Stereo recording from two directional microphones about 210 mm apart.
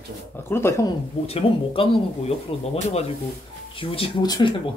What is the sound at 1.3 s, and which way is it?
Speech, 30° left (ahead or behind).